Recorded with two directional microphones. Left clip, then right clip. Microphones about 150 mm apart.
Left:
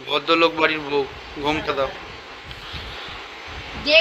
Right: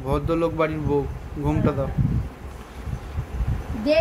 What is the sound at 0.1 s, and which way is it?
Speech, 10° right (ahead or behind).